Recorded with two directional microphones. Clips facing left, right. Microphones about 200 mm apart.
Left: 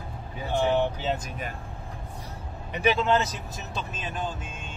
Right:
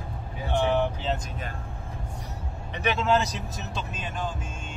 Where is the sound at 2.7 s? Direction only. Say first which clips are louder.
Left 3 dB; 5° left (ahead or behind).